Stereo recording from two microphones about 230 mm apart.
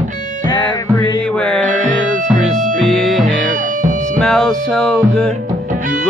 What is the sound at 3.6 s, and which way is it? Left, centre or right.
Music, right.